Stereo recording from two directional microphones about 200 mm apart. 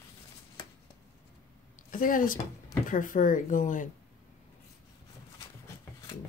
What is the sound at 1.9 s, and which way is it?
Speech, 45° left (ahead or behind).